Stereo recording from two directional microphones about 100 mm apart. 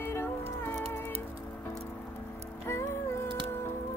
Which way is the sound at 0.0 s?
25° left (ahead or behind).